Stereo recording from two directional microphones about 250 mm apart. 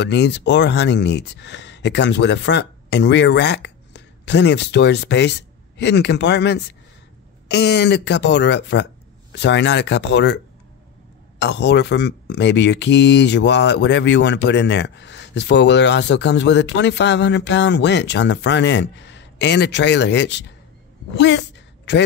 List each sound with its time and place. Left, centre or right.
0.0 s a woman's voice: left